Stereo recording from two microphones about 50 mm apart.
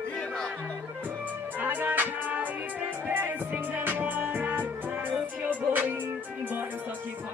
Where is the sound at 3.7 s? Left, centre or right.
Right.